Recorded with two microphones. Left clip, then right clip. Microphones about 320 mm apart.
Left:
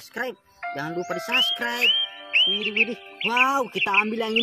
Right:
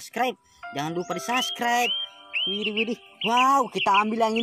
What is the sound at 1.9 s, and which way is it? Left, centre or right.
Music, left.